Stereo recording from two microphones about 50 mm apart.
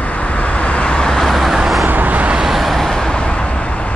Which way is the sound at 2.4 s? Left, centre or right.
Centre.